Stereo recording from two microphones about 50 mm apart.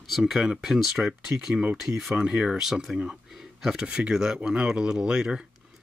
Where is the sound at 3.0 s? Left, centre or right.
Centre.